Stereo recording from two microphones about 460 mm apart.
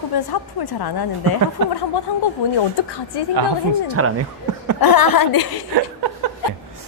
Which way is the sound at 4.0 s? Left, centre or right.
Right.